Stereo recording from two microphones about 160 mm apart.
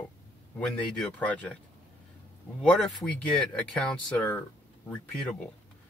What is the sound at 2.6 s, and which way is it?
Speech, 5° left (ahead or behind).